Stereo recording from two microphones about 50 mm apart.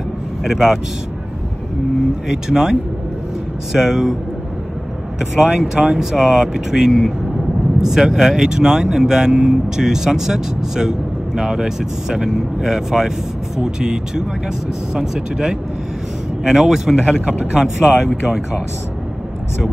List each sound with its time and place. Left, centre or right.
0.4 s speech: centre
2.2 s speech: centre
5.3 s speech: centre